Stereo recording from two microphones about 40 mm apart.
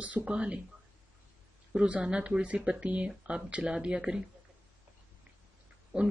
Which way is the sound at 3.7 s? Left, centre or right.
Centre.